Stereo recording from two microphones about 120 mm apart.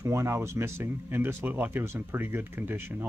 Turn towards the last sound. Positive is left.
turn(degrees=-15)  # may be behind; listen again after turning